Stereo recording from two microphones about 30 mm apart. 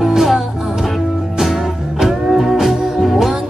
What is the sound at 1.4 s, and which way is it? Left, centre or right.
Music, centre.